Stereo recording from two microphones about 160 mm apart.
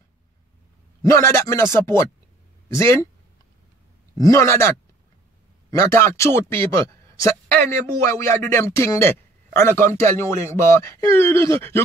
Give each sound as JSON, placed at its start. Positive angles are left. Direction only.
{"t": 1.0, "sound": "a man's voice", "side_deg": 20}
{"t": 4.2, "sound": "a man's voice", "side_deg": 20}